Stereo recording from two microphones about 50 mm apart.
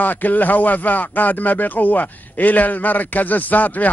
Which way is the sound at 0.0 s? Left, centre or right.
Left.